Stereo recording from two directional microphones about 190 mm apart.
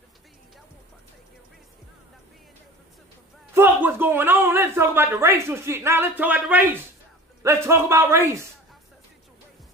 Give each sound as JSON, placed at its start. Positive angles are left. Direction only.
{"t": 3.5, "sound": "speech", "side_deg": -10}